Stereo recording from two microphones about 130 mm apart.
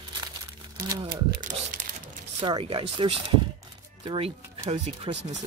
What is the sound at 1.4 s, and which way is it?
Crumpling, 90° right.